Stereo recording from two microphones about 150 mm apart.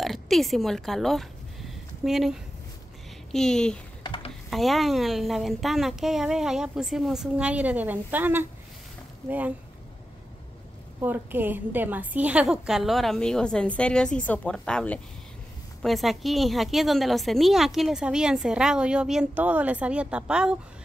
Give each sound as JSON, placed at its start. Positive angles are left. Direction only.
{"t": 0.0, "sound": "a woman's voice", "side_deg": 0}
{"t": 4.0, "sound": "a sound", "side_deg": 35}
{"t": 4.5, "sound": "a woman's voice", "side_deg": 0}
{"t": 11.0, "sound": "a woman's voice", "side_deg": -15}